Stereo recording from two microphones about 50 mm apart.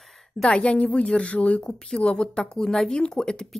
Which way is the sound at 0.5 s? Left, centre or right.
Left.